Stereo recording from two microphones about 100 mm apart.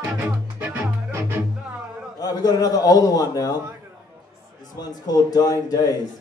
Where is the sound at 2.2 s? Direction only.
40° left (ahead or behind).